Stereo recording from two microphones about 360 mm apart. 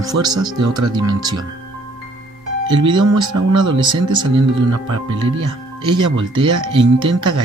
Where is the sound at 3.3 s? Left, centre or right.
Right.